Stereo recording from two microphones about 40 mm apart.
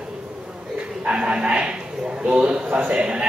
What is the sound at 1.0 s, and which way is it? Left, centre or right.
Speech, right.